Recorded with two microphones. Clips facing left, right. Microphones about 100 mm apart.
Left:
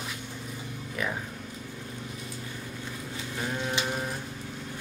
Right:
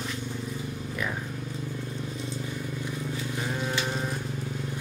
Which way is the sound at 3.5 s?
Centre (ahead or behind).